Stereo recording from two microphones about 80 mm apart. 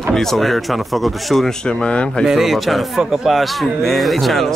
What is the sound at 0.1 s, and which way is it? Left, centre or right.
Speech, centre.